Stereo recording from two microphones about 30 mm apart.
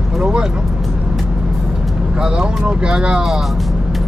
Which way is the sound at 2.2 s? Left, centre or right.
Right.